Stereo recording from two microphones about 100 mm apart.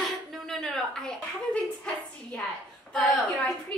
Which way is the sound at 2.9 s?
5° left (ahead or behind).